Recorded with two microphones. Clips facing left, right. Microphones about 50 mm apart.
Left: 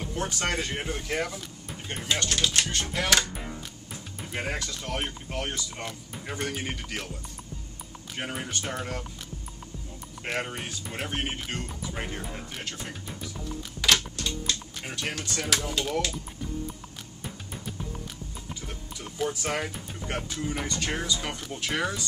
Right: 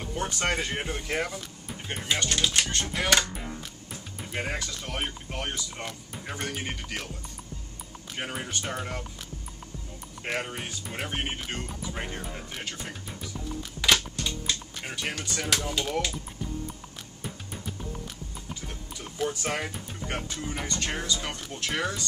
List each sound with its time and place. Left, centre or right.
0.0 s speech: centre
8.2 s speech: centre
10.2 s speech: centre
14.1 s typing: centre
19.1 s speech: centre